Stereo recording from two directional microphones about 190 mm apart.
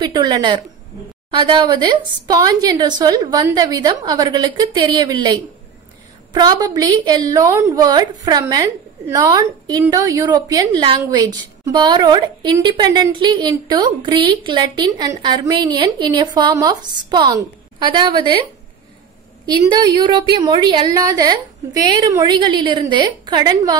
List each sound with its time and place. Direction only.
0.0 s a woman's voice: 20° right (ahead or behind)
19.4 s a woman's voice: 25° right (ahead or behind)